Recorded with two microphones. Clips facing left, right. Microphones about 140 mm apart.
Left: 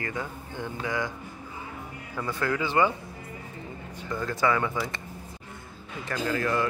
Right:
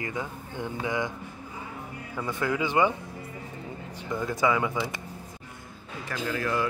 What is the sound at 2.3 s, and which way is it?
Speech, 15° right (ahead or behind).